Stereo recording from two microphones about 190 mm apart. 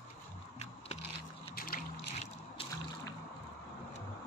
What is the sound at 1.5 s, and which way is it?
Trickle, 50° left (ahead or behind).